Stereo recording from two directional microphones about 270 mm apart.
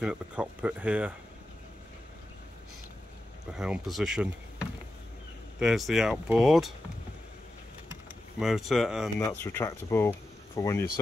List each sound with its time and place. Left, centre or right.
0.0 s speech: centre
3.5 s speech: centre
8.4 s speech: centre
9.2 s speech: centre